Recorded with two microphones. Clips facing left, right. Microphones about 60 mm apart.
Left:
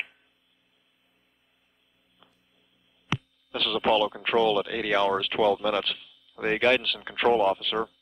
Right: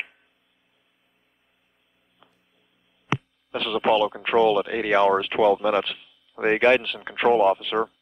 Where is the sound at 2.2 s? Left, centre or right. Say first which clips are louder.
Right 2 dB; centre.